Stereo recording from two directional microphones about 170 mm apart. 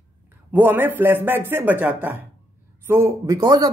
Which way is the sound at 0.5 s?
10° right (ahead or behind).